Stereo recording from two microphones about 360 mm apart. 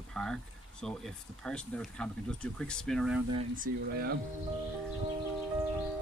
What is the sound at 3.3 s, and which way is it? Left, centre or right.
Speech, right.